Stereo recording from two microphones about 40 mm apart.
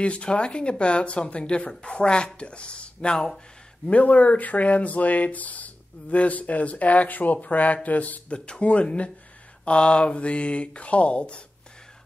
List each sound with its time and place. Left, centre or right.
0.0 s speech: left
3.9 s speech: left
8.3 s speech: left